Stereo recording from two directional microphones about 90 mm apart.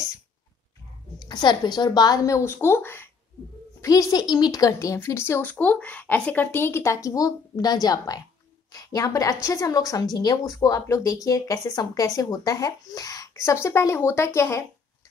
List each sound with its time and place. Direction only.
1.2 s a woman's voice: 50° left (ahead or behind); by 3.1 s 25° left (ahead or behind)
3.8 s speech: 40° left (ahead or behind)
5.5 s a woman's voice: 15° left (ahead or behind); by 14.6 s 30° left (ahead or behind)